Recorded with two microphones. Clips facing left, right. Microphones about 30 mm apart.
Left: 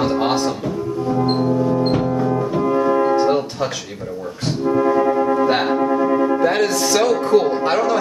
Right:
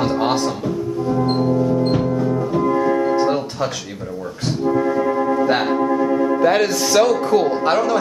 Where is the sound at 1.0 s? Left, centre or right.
Centre.